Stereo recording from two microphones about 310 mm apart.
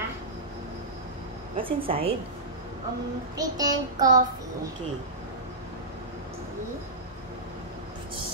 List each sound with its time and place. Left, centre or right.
1.6 s child singing: centre
3.3 s child singing: centre